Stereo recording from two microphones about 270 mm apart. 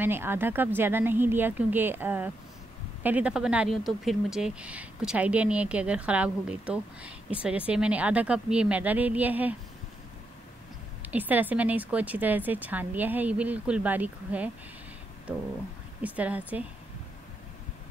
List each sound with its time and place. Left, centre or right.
0.0 s speech: centre
11.0 s speech: centre
16.0 s speech: centre